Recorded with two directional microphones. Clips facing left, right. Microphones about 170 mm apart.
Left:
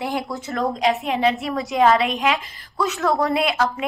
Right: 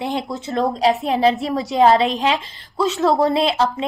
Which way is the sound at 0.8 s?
35° right (ahead or behind).